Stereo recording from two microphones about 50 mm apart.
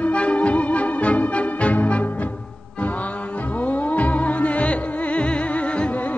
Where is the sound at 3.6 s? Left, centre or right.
Left.